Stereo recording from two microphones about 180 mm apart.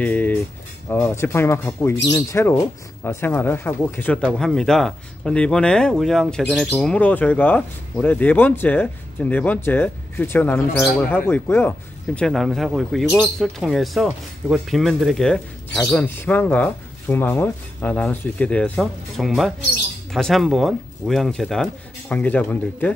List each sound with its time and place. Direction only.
0.0 s speech: 10° left (ahead or behind)
12.2 s speech: centre (ahead or behind)